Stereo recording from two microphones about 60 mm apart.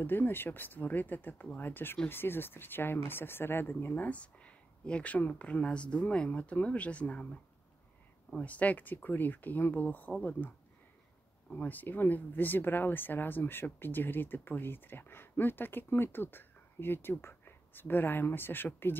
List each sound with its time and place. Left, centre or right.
0.0 s speech: left
3.9 s speech: left
8.4 s speech: left
11.5 s speech: left